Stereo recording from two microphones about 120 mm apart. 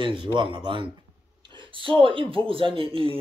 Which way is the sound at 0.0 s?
45° right (ahead or behind).